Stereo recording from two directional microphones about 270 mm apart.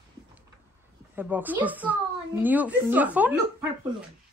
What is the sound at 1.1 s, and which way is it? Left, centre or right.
A woman's voice, centre.